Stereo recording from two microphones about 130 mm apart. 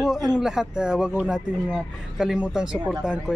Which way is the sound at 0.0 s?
Centre (ahead or behind).